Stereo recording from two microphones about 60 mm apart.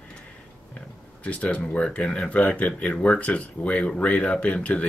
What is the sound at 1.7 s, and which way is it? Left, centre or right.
Speech, centre.